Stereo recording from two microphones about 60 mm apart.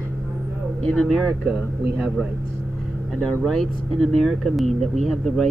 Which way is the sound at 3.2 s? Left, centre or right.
Centre.